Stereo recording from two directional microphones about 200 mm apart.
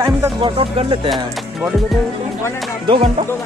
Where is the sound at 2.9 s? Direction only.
25° right (ahead or behind).